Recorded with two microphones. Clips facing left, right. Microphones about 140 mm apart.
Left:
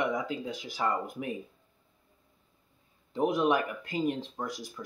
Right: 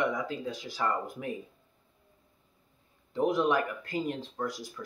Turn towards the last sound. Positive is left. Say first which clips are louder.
# right 1 dB
turn(degrees=15)  # may be behind; listen again after turning